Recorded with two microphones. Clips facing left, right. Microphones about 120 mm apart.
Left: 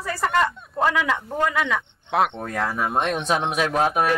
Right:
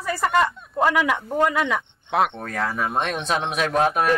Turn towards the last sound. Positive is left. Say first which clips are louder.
# even
turn(degrees=5)  # may be behind; listen again after turning